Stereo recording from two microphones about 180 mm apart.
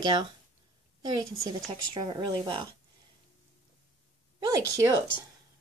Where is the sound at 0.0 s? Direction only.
25° right (ahead or behind).